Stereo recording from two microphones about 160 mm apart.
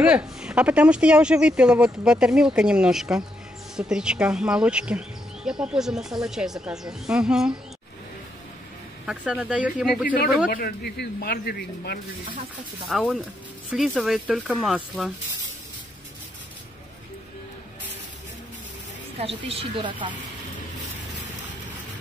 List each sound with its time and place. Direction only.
0.0 s speech: 5° right (ahead or behind)
9.0 s speech: 5° right (ahead or behind)
10.0 s speech: 65° left (ahead or behind)
10.5 s speech: 80° left
12.8 s speech: centre (ahead or behind)
19.1 s speech: 35° right (ahead or behind)